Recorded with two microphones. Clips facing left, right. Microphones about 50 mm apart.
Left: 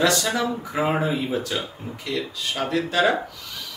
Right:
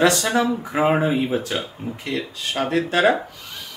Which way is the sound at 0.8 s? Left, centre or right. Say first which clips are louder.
Right 5 dB; right.